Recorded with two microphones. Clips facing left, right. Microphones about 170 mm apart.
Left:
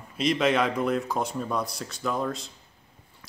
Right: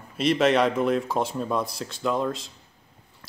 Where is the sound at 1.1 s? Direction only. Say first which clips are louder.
Right 3 dB; 25° right (ahead or behind).